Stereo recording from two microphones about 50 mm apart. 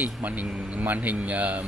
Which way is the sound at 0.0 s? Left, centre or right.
Right.